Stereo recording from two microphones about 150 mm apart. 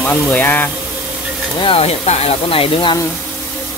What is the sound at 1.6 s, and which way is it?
Speech, 40° left (ahead or behind).